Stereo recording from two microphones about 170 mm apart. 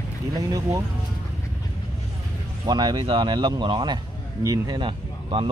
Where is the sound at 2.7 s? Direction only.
25° right (ahead or behind).